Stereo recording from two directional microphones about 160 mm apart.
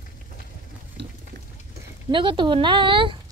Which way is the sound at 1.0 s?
90° right.